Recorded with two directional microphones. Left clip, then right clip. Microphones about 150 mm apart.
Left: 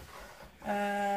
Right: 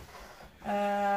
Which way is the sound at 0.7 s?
25° right (ahead or behind).